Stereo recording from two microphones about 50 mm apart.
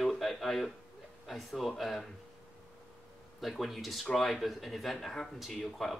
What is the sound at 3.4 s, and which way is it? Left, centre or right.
Speech, centre.